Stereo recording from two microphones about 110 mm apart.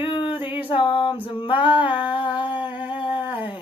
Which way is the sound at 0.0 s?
50° left (ahead or behind).